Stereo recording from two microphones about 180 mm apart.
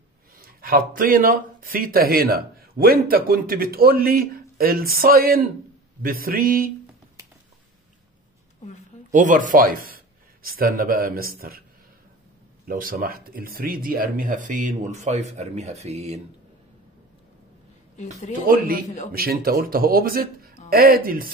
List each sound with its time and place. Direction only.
0.4 s speech: 55° right (ahead or behind)
9.1 s speech: 45° right (ahead or behind)
12.6 s speech: 55° right (ahead or behind); by 16.2 s 35° right (ahead or behind)
19.1 s speech: 55° right (ahead or behind)